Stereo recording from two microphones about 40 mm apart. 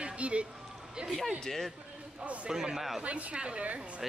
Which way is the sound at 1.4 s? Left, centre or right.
Centre.